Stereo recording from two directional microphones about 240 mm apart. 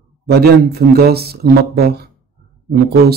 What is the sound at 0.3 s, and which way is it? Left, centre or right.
Speech, right.